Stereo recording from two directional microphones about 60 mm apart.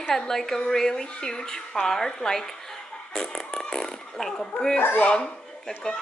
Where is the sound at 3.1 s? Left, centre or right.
Centre.